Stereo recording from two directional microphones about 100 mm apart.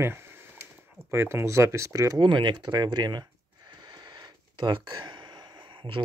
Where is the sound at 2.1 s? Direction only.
50° right (ahead or behind).